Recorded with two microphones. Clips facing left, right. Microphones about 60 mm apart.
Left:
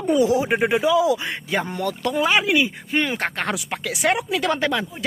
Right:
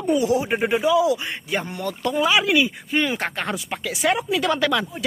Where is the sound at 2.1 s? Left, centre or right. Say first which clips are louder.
Right 1 dB; left.